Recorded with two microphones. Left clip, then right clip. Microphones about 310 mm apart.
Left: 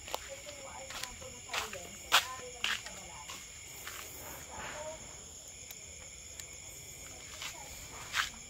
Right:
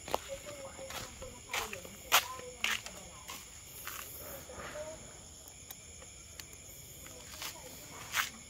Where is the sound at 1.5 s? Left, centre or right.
Right.